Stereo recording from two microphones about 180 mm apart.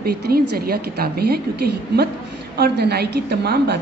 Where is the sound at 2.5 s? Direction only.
65° right (ahead or behind).